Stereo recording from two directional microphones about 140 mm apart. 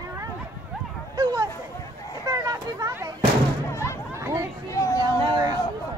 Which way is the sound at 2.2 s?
25° right (ahead or behind).